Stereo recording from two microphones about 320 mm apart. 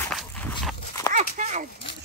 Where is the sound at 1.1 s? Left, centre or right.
Right.